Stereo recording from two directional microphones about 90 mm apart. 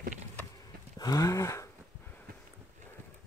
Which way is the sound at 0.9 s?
45° left (ahead or behind).